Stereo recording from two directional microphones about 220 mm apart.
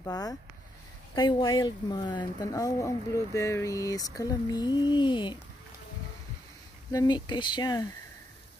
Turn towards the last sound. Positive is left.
turn(degrees=20)  # may be behind; listen again after turning